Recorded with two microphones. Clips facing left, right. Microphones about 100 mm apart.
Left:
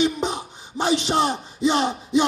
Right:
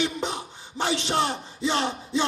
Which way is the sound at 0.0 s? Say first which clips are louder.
Left 5 dB; 20° left (ahead or behind).